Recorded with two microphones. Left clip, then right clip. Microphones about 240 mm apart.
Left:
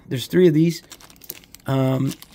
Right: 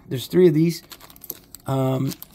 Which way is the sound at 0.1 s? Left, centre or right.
Centre.